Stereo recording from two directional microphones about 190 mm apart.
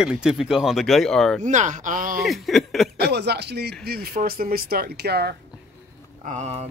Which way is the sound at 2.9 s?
60° right (ahead or behind).